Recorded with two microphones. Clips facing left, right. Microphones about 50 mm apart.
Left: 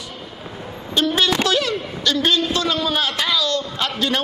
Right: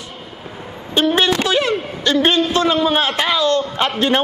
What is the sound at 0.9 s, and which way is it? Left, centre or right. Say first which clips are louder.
A woman's voice: right 3 dB; right.